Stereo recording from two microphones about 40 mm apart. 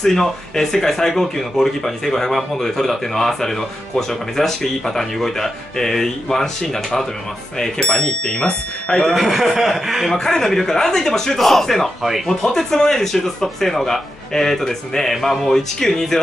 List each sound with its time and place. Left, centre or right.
0.0 s speech: centre
9.1 s speech: centre
10.1 s speech: centre